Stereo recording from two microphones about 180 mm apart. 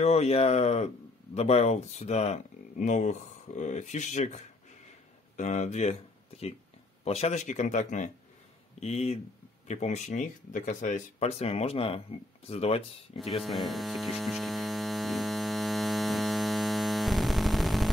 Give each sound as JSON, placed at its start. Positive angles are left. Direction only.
{"t": 0.0, "sound": "a man's voice", "side_deg": 35}
{"t": 5.4, "sound": "a man's voice", "side_deg": 40}
{"t": 13.3, "sound": "mains hum", "side_deg": 0}